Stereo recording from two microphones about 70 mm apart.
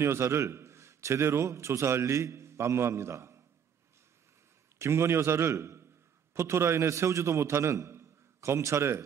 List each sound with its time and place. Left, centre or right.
0.0 s a man's voice: right
4.7 s a man's voice: right